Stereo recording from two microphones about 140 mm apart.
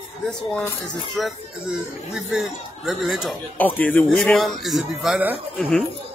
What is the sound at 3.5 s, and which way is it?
Speech, 10° left (ahead or behind).